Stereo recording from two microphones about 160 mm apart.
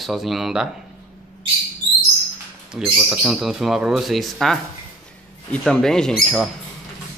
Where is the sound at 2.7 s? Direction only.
5° right (ahead or behind).